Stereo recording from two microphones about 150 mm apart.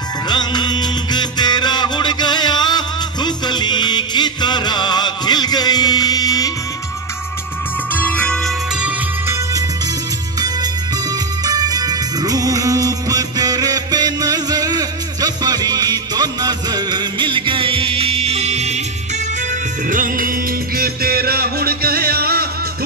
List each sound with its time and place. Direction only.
0.3 s music: 30° left (ahead or behind)
7.9 s music: 10° left (ahead or behind)
11.4 s music: 25° right (ahead or behind); by 18.8 s 50° right (ahead or behind)
19.9 s music: 65° right (ahead or behind); by 22.5 s 90° right